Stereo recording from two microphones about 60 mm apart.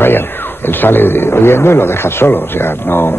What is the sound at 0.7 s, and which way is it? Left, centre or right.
A man's voice, left.